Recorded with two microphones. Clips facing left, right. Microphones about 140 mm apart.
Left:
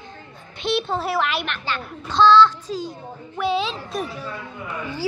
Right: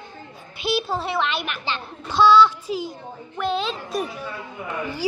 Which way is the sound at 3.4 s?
5° left (ahead or behind).